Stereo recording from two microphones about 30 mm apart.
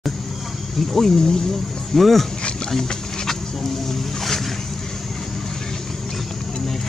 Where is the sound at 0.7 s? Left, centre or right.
Centre.